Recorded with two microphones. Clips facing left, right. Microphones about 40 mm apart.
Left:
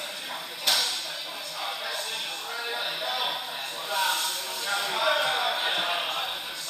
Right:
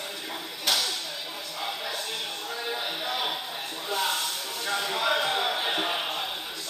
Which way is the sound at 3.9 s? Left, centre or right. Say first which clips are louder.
Left 1 dB; left.